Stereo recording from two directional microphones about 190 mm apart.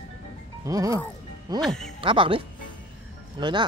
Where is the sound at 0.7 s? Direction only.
20° right (ahead or behind).